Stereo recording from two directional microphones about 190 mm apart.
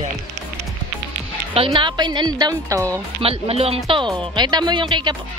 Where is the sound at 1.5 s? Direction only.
30° right (ahead or behind).